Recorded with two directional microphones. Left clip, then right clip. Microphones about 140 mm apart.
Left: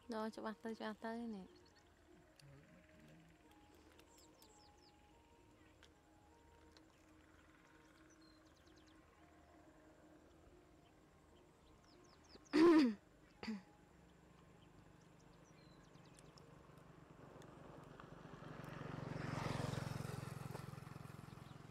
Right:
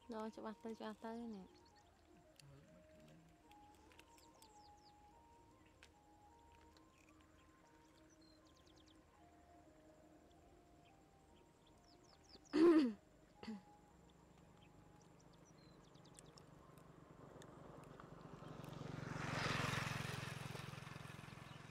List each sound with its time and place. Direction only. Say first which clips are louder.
0.1 s speech: left 3 dB; 10° left (ahead or behind)
12.4 s throat clearing: left 2 dB; 15° left (ahead or behind)
17.5 s vehicle: even; 20° left (ahead or behind)
18.8 s vehicle: left 1 dB; 10° right (ahead or behind)
19.1 s vehicle: right 5 dB; 30° right (ahead or behind)